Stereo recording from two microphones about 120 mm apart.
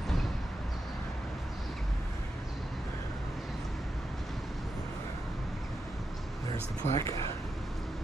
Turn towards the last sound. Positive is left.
turn(degrees=25)  # may be behind; listen again after turning